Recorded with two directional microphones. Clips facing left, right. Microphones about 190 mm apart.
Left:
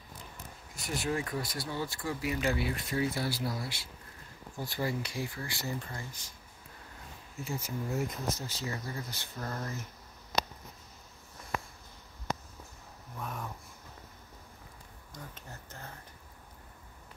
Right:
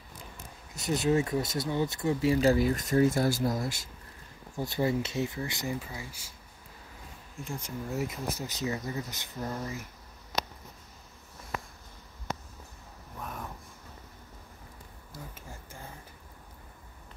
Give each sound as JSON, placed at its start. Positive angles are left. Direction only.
{"t": 0.7, "sound": "speech", "side_deg": -20}
{"t": 4.6, "sound": "speech", "side_deg": -20}
{"t": 5.8, "sound": "speech", "side_deg": -5}
{"t": 7.4, "sound": "speech", "side_deg": 5}
{"t": 13.2, "sound": "a sound", "side_deg": 0}
{"t": 15.1, "sound": "a sound", "side_deg": -10}